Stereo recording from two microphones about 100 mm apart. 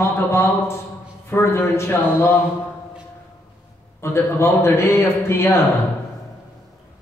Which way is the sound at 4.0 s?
25° left (ahead or behind).